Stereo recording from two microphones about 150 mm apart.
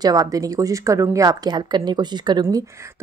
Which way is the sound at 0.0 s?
25° right (ahead or behind).